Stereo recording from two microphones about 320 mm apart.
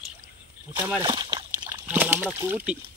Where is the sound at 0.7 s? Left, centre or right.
Centre.